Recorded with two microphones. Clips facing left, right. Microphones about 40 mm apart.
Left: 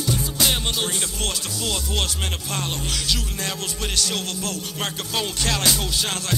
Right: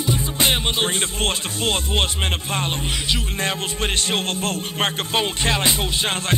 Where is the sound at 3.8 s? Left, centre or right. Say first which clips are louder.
Right 2 dB; right.